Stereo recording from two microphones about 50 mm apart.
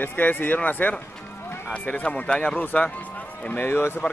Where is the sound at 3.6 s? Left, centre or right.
Left.